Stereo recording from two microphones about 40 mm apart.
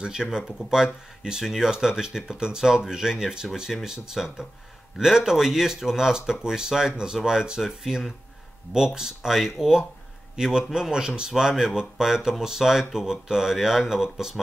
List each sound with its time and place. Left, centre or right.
0.0 s speech: centre